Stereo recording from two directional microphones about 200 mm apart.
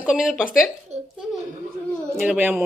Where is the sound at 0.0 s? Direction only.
5° right (ahead or behind).